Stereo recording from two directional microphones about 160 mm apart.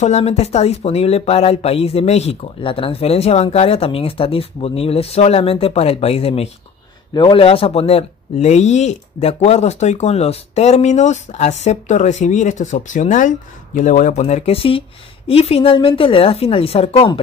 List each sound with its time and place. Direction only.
0.0 s speech: 45° left (ahead or behind)